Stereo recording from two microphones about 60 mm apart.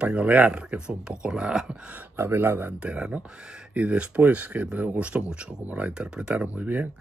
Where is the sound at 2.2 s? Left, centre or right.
Right.